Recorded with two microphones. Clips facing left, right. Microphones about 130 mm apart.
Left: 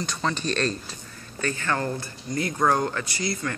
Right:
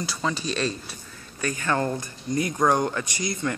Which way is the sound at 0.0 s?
5° right (ahead or behind).